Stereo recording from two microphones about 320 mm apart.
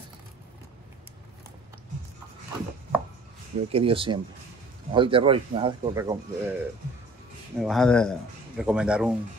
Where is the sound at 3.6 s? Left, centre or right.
Centre.